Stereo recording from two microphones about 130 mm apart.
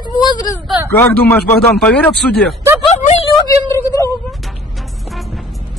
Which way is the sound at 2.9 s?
60° left (ahead or behind).